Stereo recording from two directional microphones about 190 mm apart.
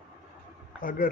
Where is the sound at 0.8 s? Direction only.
50° left (ahead or behind).